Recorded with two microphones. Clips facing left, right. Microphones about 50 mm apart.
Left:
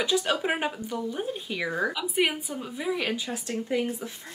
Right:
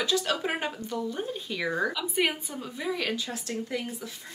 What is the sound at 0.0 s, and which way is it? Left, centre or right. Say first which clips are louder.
Speech: left 2 dB; centre.